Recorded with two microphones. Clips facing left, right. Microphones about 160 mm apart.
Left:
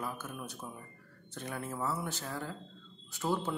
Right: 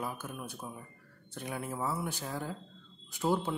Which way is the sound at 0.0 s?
10° right (ahead or behind).